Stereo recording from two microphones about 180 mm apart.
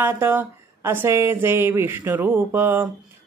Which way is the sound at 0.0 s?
10° right (ahead or behind).